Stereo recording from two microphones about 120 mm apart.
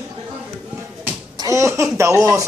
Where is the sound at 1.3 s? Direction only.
25° right (ahead or behind).